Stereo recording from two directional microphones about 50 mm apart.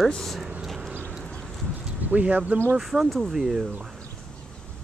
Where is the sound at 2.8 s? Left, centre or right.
Centre.